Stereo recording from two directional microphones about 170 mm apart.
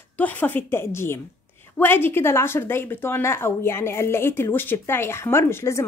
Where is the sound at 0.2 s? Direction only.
10° left (ahead or behind).